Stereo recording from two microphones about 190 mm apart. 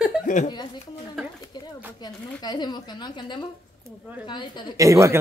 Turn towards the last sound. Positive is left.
turn(degrees=-15)  # may be behind; listen again after turning